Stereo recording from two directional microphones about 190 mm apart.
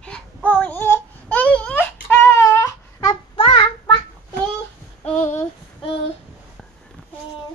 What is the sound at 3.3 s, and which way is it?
Child singing, 25° left (ahead or behind).